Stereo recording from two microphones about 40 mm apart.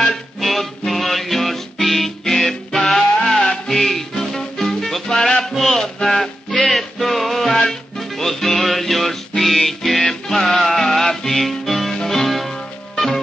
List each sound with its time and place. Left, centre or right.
0.4 s music: centre
5.9 s music: left
6.2 s music: centre